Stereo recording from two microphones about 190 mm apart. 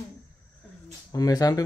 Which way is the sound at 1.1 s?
20° left (ahead or behind).